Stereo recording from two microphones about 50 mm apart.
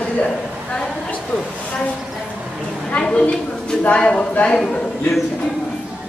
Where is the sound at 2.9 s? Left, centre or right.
Left.